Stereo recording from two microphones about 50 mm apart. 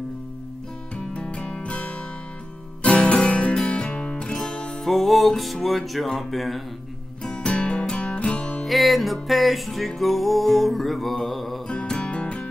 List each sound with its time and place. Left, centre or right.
1.1 s music: left
4.8 s music: centre
7.2 s music: left
8.6 s music: centre
11.6 s music: centre